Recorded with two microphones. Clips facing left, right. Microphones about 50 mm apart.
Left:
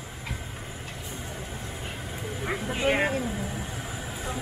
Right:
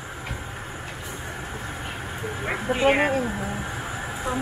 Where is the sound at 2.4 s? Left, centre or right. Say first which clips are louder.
Right 6 dB; right.